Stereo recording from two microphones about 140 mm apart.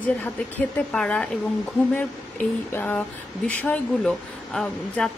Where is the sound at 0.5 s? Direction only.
5° left (ahead or behind).